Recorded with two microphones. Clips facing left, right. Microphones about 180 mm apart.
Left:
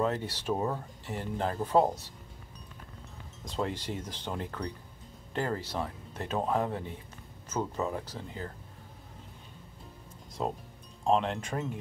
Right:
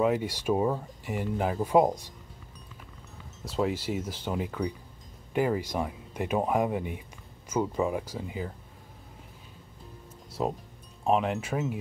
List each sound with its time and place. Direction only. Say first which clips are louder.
0.0 s speech: right 5 dB; 10° right (ahead or behind)
3.4 s speech: right 5 dB; 5° right (ahead or behind)
10.4 s speech: right 3 dB; 5° right (ahead or behind)